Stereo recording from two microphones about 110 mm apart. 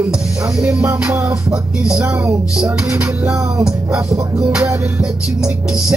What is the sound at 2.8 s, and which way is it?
Music, 25° right (ahead or behind).